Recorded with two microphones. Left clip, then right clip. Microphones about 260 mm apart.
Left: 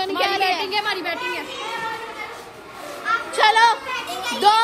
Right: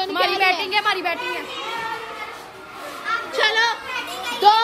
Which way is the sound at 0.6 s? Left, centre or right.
Right.